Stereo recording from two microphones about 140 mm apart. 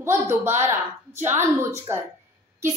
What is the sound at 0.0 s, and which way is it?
A woman's voice, 15° right (ahead or behind).